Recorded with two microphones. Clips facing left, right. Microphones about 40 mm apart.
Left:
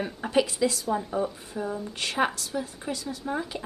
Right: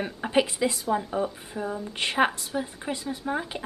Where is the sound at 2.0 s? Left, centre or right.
Right.